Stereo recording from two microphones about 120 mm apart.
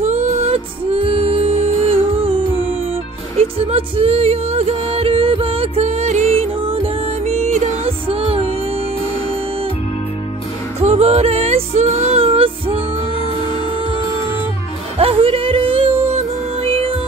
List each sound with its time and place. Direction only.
0.0 s music: 65° right (ahead or behind)
3.3 s music: 55° right (ahead or behind)
10.8 s music: 60° right (ahead or behind)
15.0 s music: 50° right (ahead or behind)